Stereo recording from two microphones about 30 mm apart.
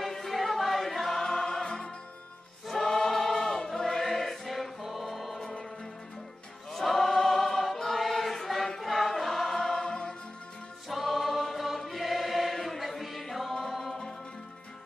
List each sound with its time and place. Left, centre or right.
0.0 s choir: centre
1.2 s music: centre
2.7 s choir: centre
4.8 s music: centre
5.4 s music: centre
6.7 s choir: centre
9.6 s music: centre
10.9 s choir: centre
13.6 s music: centre